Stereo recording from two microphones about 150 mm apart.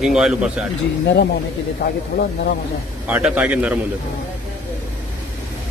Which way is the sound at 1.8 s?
90° left.